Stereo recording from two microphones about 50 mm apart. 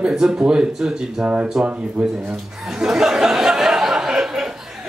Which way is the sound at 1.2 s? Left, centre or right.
Right.